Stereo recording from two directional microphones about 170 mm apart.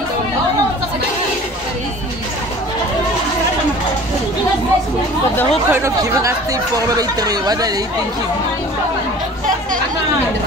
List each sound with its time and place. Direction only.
5.7 s speech: 15° right (ahead or behind)